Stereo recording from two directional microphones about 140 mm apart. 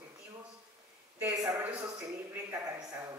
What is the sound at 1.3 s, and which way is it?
A woman's voice, 25° right (ahead or behind).